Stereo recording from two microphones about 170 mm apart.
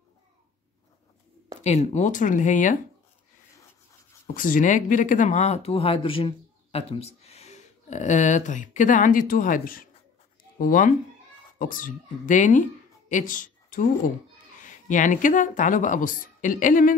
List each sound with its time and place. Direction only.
1.6 s speech: 40° left (ahead or behind)
4.3 s a woman's voice: 50° left (ahead or behind)